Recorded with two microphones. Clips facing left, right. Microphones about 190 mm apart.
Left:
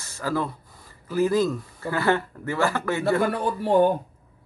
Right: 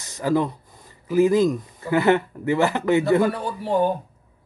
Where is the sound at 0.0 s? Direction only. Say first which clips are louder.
Right 5 dB; 20° right (ahead or behind).